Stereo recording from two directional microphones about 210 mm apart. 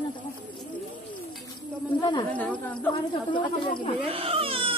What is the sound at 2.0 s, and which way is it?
Speech, 20° left (ahead or behind).